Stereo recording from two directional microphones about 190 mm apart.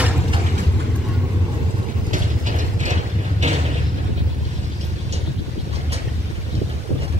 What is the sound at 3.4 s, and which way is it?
Vehicle, 40° right (ahead or behind).